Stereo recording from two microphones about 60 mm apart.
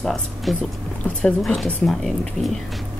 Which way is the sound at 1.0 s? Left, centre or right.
Left.